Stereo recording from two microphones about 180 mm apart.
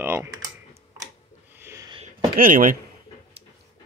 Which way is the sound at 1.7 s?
20° right (ahead or behind).